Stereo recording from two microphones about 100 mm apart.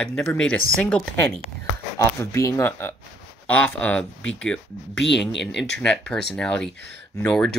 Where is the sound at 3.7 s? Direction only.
10° left (ahead or behind).